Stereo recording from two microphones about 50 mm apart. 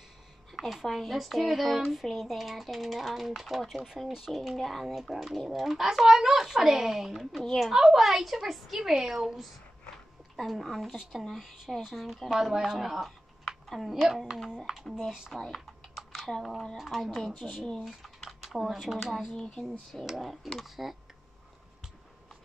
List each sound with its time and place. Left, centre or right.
0.5 s speech: centre
4.3 s speech: centre
15.3 s speech: centre
19.3 s speech: centre
19.9 s speech: centre